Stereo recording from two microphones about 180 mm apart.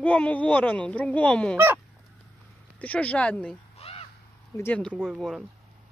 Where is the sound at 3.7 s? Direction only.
35° left (ahead or behind).